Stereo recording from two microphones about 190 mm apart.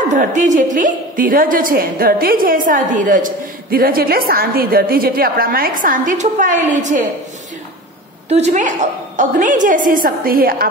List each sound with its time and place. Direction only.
0.1 s a woman's voice: 40° right (ahead or behind)
8.3 s a woman's voice: 35° right (ahead or behind)